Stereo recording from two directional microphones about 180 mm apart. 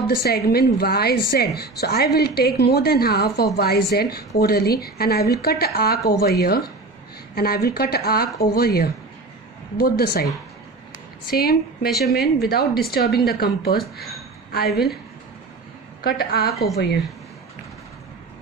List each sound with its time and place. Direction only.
0.2 s a woman's voice: 60° left (ahead or behind)
11.2 s a woman's voice: 55° left (ahead or behind)
16.0 s a woman's voice: 55° left (ahead or behind)
16.4 s a woman's voice: centre (ahead or behind)
16.7 s speech: 65° left (ahead or behind)